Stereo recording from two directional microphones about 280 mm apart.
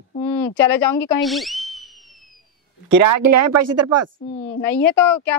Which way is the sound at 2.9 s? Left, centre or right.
Right.